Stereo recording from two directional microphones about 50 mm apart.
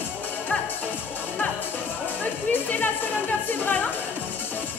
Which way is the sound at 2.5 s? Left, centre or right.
Left.